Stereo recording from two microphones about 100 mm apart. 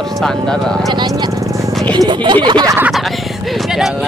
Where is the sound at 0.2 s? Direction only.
5° left (ahead or behind).